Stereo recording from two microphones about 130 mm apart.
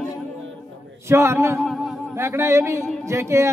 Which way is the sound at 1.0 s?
20° right (ahead or behind).